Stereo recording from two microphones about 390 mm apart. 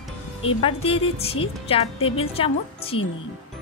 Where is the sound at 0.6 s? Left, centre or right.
Centre.